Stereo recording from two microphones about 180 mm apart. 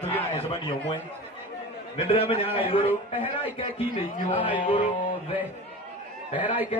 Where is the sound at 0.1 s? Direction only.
30° left (ahead or behind).